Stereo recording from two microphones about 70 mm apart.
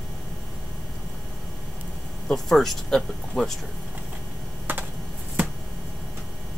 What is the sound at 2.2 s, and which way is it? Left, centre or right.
Speech, centre.